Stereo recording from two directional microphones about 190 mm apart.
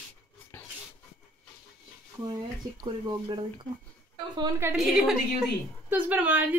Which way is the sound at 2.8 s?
25° right (ahead or behind).